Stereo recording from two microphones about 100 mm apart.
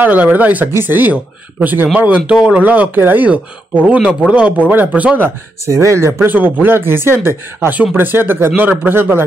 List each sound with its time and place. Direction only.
0.0 s speech: 15° right (ahead or behind)
5.7 s speech: 30° right (ahead or behind)